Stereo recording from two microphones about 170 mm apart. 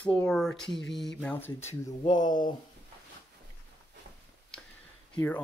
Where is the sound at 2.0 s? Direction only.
25° left (ahead or behind).